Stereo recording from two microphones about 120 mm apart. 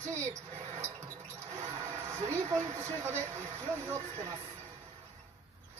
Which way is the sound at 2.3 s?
25° right (ahead or behind).